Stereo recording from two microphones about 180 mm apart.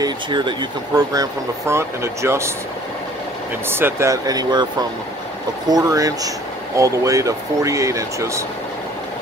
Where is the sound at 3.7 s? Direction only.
15° right (ahead or behind).